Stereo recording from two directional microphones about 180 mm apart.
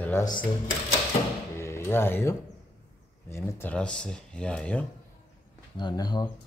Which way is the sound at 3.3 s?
15° left (ahead or behind).